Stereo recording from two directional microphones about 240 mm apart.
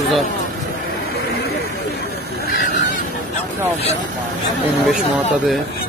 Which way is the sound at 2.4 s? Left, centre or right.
Left.